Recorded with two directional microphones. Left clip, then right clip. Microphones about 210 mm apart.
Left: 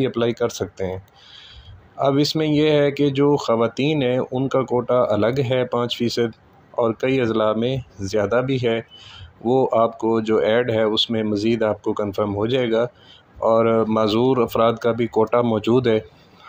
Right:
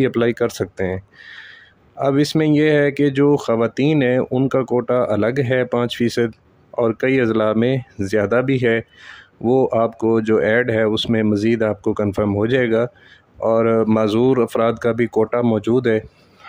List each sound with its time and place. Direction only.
0.0 s speech: 30° right (ahead or behind)